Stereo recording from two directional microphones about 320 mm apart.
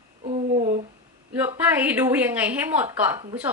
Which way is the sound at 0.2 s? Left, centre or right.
Right.